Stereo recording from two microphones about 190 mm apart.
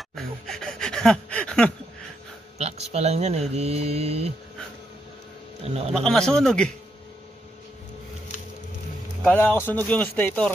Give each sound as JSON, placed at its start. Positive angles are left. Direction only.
{"t": 0.1, "sound": "gasp", "side_deg": 0}
{"t": 2.6, "sound": "speech", "side_deg": -35}
{"t": 5.6, "sound": "a man's voice", "side_deg": -30}
{"t": 5.9, "sound": "speech", "side_deg": 5}
{"t": 9.2, "sound": "speech", "side_deg": 10}